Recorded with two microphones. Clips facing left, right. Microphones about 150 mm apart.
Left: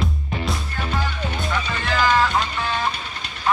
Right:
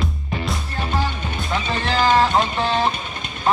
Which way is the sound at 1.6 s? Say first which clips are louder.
Right 3 dB; 30° right (ahead or behind).